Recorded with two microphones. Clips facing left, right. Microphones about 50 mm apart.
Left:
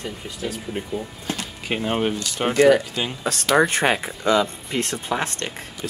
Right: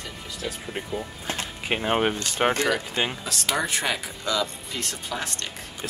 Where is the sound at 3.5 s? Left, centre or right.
Left.